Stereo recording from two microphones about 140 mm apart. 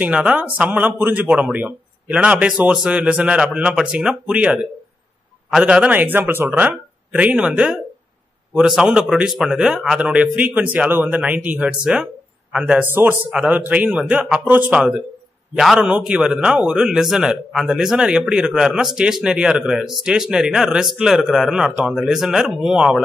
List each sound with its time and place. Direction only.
0.0 s a man's voice: 10° right (ahead or behind)